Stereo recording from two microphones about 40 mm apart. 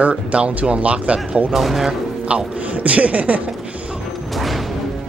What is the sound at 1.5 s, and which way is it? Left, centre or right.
Speech, centre.